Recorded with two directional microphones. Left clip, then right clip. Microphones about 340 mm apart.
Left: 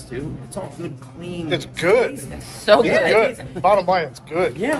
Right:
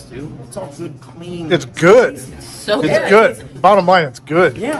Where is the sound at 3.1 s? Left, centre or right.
Right.